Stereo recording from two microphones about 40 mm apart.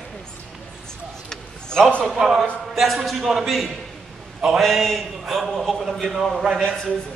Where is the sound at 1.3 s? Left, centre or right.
Centre.